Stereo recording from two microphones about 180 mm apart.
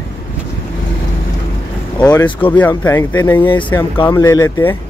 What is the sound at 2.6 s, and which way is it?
Speech, 10° left (ahead or behind).